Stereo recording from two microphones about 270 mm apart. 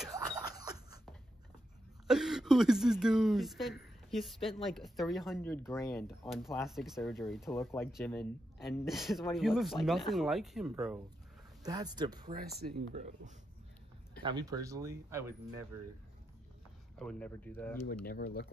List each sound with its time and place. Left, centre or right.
2.0 s speech: centre
6.0 s speech: centre
11.6 s speech: centre
12.3 s speech: right
14.2 s speech: centre
17.0 s speech: centre
18.0 s speech: left